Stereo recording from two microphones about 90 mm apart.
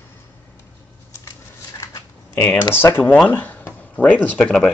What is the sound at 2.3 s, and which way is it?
Speech, 25° left (ahead or behind).